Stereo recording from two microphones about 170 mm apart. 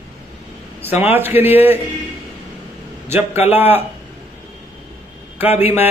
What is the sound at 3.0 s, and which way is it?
Speech, 15° right (ahead or behind).